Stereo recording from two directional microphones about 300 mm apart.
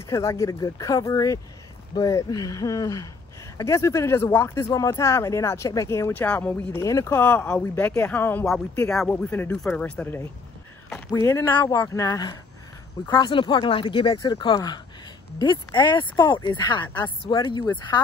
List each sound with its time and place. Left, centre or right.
0.0 s speech: centre